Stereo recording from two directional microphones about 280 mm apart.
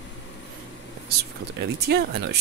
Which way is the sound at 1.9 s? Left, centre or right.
Right.